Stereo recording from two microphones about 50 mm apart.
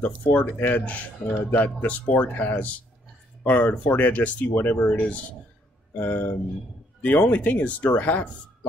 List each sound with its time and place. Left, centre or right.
0.0 s speech: left
0.8 s speech: left
4.6 s speech: left
4.8 s speech: left